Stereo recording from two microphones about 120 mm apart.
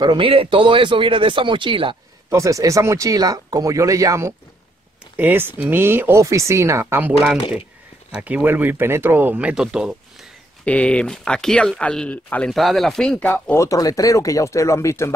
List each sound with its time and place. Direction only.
0.0 s speech: 45° right (ahead or behind)
2.2 s speech: 25° right (ahead or behind)
5.1 s speech: 15° right (ahead or behind)
10.6 s speech: 10° left (ahead or behind)
13.6 s speech: 30° left (ahead or behind)